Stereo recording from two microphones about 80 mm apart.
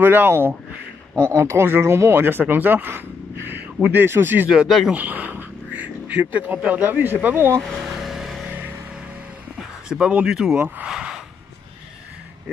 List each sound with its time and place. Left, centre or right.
0.0 s speech: right
1.2 s speech: right
4.5 s speech: centre
4.9 s speech: right
7.6 s vehicle: centre
8.5 s vehicle: right
9.6 s a man's voice: centre
10.9 s a sound: centre